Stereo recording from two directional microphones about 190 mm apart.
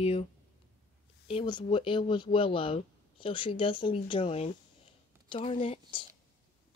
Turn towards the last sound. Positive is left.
turn(degrees=30)  # may be behind; listen again after turning